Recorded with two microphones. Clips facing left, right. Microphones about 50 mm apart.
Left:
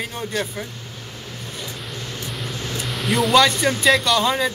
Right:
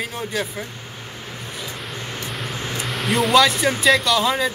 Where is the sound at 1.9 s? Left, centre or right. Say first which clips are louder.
Right 1 dB; right.